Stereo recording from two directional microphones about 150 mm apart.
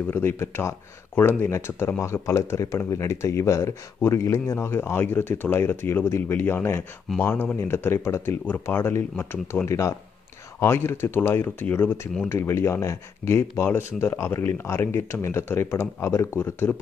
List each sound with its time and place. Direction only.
0.1 s speech: 15° left (ahead or behind)